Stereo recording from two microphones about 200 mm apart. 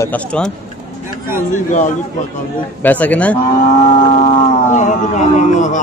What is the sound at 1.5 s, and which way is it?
Speech, 40° left (ahead or behind).